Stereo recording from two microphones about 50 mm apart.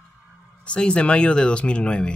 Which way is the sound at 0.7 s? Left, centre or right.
Left.